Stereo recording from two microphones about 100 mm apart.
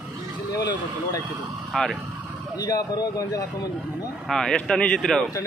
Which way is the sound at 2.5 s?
40° left (ahead or behind).